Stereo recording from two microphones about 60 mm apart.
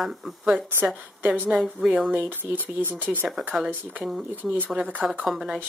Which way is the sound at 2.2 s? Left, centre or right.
Right.